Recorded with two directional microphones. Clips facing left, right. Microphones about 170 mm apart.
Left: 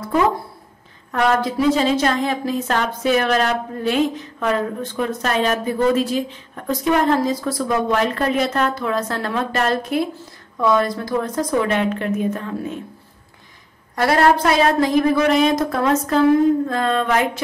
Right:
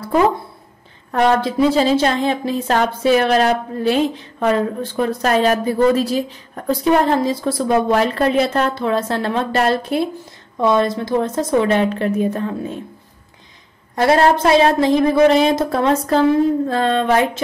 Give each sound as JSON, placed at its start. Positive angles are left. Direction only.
{"t": 1.1, "sound": "a woman's voice", "side_deg": -30}
{"t": 13.9, "sound": "a woman's voice", "side_deg": -25}